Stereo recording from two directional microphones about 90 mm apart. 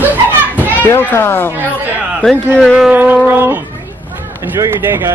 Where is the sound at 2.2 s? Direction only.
5° left (ahead or behind).